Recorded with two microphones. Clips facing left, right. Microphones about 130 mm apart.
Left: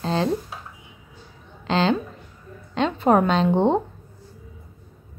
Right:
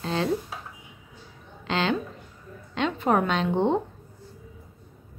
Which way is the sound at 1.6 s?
35° left (ahead or behind).